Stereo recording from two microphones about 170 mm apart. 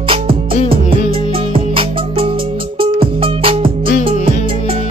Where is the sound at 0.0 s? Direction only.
30° right (ahead or behind).